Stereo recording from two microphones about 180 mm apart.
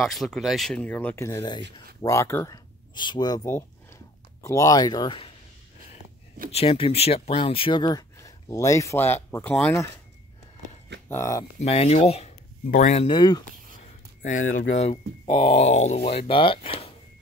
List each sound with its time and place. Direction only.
0.0 s speech: centre (ahead or behind); by 5.3 s 25° left (ahead or behind)
6.5 s speech: 30° left (ahead or behind); by 9.8 s 10° left (ahead or behind)
11.1 s speech: 20° left (ahead or behind)
11.6 s speech: 35° left (ahead or behind)
14.4 s speech: 90° left
14.8 s speech: 30° left (ahead or behind)